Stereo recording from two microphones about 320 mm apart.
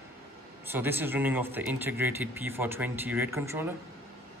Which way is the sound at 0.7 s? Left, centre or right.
Centre.